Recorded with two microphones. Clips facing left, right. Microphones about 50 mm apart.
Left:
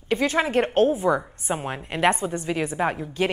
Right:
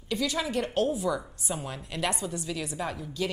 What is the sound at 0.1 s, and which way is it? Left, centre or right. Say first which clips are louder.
A woman's voice: left 7 dB; left.